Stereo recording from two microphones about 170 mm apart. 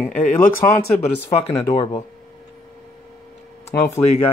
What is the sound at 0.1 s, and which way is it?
Speech, 55° left (ahead or behind).